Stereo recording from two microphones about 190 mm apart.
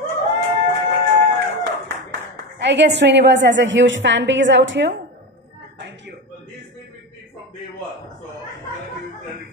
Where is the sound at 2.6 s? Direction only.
65° right (ahead or behind).